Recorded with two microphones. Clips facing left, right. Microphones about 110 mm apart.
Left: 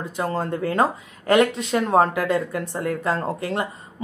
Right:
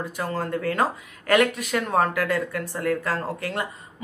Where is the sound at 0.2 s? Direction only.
25° left (ahead or behind).